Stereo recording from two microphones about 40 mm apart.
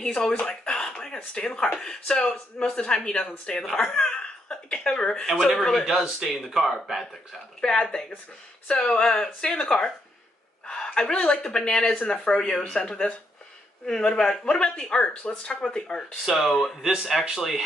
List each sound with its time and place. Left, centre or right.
0.0 s speech: left
0.5 s a sound: centre
1.1 s speech: left
5.2 s speech: centre
5.9 s speech: centre
6.2 s speech: centre
7.6 s speech: centre
16.3 s speech: centre
16.8 s speech: centre